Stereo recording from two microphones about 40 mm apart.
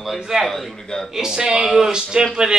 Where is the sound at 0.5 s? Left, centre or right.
Centre.